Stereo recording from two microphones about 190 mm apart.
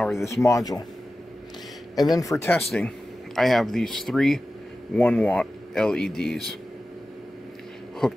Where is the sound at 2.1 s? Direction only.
15° left (ahead or behind).